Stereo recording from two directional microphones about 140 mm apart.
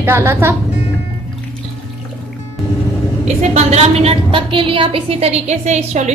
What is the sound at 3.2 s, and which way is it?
A woman's voice, 50° right (ahead or behind).